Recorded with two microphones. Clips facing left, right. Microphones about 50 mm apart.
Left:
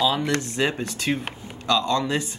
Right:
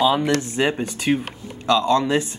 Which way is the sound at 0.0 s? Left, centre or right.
Centre.